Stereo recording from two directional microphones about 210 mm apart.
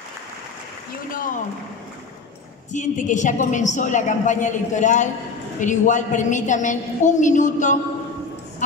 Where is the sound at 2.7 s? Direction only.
35° left (ahead or behind).